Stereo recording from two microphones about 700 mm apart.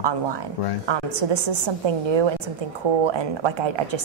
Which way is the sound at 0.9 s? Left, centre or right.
Right.